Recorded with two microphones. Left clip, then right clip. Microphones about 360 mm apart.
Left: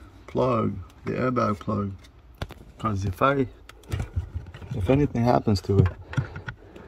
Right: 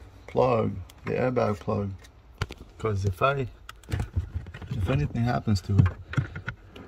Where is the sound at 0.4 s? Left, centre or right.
Left.